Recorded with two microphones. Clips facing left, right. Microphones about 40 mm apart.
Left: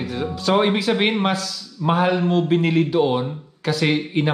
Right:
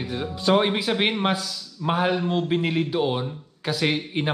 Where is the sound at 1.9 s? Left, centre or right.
Centre.